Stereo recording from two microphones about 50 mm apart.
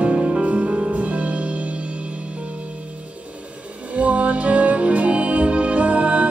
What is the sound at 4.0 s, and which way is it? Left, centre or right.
Music, right.